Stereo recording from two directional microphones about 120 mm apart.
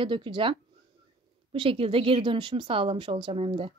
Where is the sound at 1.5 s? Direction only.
50° right (ahead or behind).